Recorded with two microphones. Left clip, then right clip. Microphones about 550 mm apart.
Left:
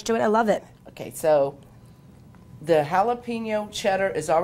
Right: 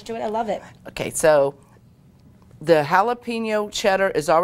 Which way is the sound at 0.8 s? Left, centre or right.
Right.